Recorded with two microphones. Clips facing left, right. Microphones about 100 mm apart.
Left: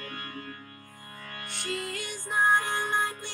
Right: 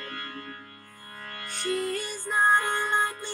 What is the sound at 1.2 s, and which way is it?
Music, 40° right (ahead or behind).